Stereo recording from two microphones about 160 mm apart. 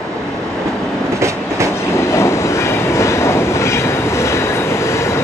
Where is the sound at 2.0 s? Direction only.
15° left (ahead or behind).